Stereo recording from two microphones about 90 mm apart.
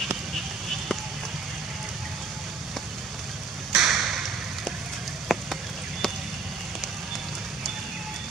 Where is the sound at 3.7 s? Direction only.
5° right (ahead or behind).